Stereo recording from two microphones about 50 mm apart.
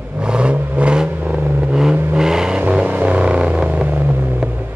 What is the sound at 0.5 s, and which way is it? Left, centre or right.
Vehicle, right.